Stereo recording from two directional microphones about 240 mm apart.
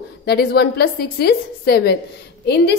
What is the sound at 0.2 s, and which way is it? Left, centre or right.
A woman's voice, left.